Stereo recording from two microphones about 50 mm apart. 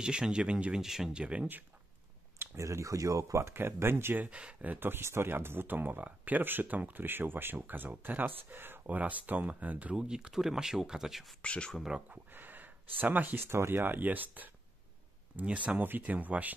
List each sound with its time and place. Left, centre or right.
0.0 s speech: centre
0.7 s speech: centre
1.1 s speech: right
2.5 s speech: right
3.5 s speech: right
4.2 s speech: right
4.7 s speech: right
8.8 s speech: right
9.9 s speech: centre
11.4 s speech: left
12.3 s a sound: right
13.4 s speech: right
15.8 s speech: right